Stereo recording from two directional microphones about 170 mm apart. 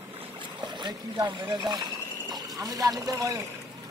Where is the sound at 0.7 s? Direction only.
25° right (ahead or behind).